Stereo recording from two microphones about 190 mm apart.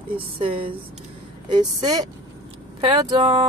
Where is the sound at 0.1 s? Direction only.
30° right (ahead or behind).